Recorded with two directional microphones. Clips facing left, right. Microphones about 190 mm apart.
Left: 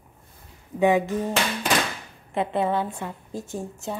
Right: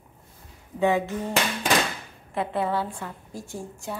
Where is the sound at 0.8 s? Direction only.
15° left (ahead or behind).